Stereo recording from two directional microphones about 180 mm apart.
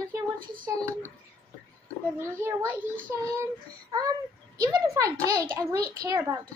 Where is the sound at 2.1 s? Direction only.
10° right (ahead or behind).